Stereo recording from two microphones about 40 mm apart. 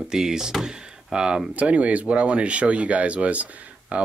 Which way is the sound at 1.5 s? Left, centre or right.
Right.